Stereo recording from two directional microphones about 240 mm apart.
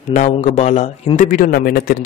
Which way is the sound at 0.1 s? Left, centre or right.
Left.